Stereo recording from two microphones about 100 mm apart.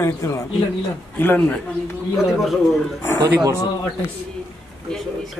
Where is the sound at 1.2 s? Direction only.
20° left (ahead or behind).